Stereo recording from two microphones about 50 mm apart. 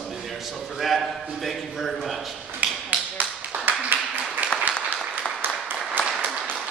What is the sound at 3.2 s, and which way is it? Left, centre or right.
Clapping, right.